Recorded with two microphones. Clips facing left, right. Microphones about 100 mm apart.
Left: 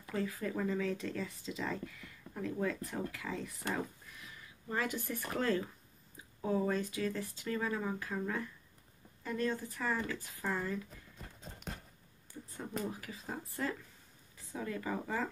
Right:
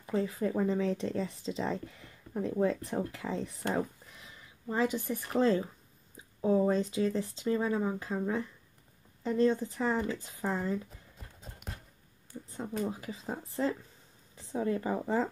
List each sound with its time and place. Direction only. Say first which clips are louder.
0.0 s speech: right 6 dB; 25° right (ahead or behind)
4.6 s speech: right 6 dB; 20° right (ahead or behind)
11.1 s clip-clop: even; 5° right (ahead or behind)
12.8 s speech: right 5 dB; 25° right (ahead or behind)